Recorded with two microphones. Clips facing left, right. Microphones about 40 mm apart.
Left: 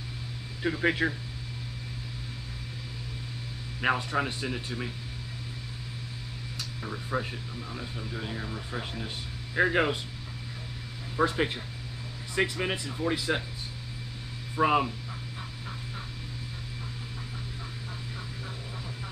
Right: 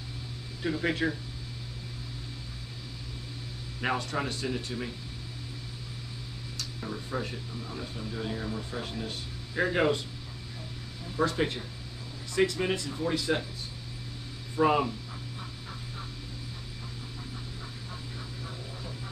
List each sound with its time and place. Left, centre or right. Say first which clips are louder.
0.6 s speech: left 2 dB; left
3.8 s speech: left 3 dB; centre
6.5 s speech: even; left
11.1 s speech: left 1 dB; left
14.5 s speech: even; centre